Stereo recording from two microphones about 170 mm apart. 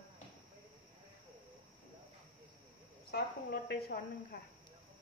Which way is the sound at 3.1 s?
70° left (ahead or behind).